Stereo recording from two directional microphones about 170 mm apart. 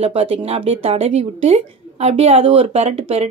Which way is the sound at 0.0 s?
35° right (ahead or behind).